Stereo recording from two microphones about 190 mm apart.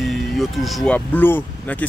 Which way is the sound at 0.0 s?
Centre (ahead or behind).